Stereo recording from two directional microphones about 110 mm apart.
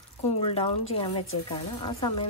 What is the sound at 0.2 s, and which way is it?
Speech, 65° left (ahead or behind).